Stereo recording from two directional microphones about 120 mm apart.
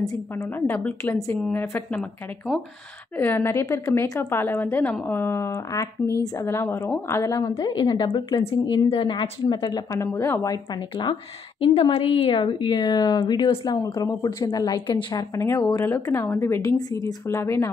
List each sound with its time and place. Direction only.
0.0 s a woman's voice: 25° left (ahead or behind)
0.7 s a woman's voice: 10° left (ahead or behind)
3.2 s a woman's voice: 15° left (ahead or behind)
7.5 s a woman's voice: 40° left (ahead or behind)
10.1 s a woman's voice: 25° left (ahead or behind)
11.6 s a woman's voice: 55° left (ahead or behind)
15.3 s a woman's voice: 25° left (ahead or behind)